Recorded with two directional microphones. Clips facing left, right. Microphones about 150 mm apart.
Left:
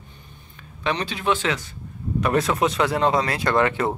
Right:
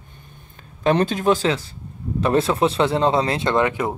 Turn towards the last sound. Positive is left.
turn(degrees=-15)  # may be behind; listen again after turning